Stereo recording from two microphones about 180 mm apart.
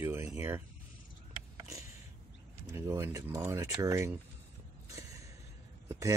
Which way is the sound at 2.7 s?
15° right (ahead or behind).